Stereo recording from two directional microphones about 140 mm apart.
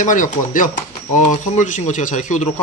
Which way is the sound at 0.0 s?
65° left (ahead or behind).